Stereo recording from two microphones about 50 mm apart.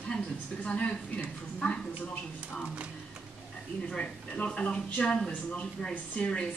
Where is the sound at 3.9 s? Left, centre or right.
Left.